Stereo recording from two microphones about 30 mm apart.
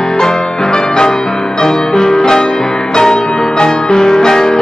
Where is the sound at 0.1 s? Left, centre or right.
Left.